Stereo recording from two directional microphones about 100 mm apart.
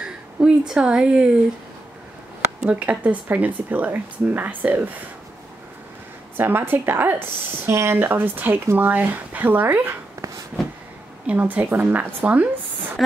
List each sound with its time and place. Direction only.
0.0 s speech: 10° right (ahead or behind)
2.6 s speech: 15° right (ahead or behind)
6.3 s speech: 20° right (ahead or behind)
11.2 s speech: 15° right (ahead or behind)